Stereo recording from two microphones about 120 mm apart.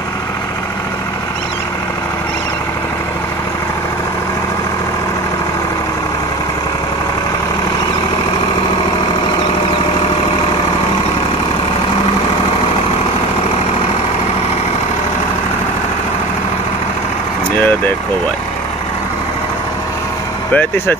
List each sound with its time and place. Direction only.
17.6 s vehicle: 15° left (ahead or behind)
20.5 s speech: 15° left (ahead or behind)